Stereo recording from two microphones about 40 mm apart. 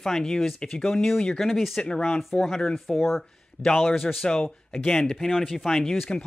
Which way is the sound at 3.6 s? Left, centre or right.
Left.